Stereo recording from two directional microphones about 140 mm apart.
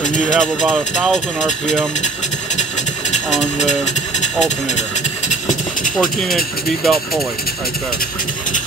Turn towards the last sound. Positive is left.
turn(degrees=0)  # may be behind; listen again after turning